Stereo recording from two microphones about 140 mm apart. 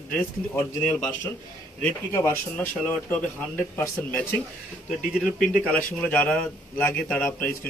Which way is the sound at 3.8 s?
10° left (ahead or behind).